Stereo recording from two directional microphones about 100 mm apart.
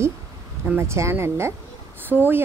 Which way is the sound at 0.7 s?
25° right (ahead or behind).